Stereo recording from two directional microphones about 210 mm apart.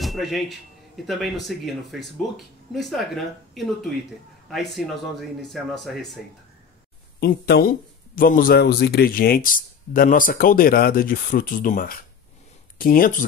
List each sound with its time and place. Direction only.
0.0 s speech: centre (ahead or behind)
5.4 s speech: centre (ahead or behind)
7.2 s speech: 50° left (ahead or behind)